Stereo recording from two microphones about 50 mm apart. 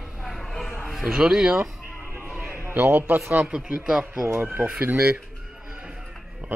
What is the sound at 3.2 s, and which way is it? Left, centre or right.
Speech, right.